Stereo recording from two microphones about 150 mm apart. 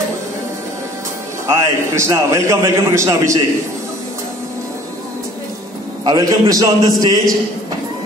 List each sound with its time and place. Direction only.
1.5 s a man's voice: 20° right (ahead or behind)
6.0 s a man's voice: 25° right (ahead or behind)